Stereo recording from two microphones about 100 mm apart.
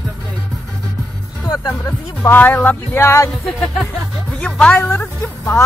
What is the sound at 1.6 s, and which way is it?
Speech, 25° left (ahead or behind).